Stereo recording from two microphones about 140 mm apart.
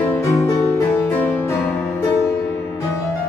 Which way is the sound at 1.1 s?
15° left (ahead or behind).